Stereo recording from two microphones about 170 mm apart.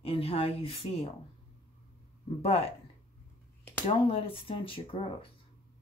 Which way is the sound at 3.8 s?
30° left (ahead or behind).